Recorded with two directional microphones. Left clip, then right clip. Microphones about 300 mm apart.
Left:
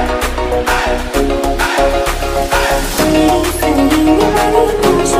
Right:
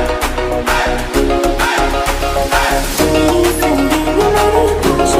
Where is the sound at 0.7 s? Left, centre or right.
Centre.